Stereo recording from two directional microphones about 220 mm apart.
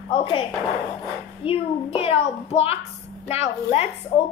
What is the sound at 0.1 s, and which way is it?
A child's voice, 20° left (ahead or behind).